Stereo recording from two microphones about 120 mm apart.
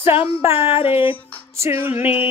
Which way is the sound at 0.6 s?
55° left (ahead or behind).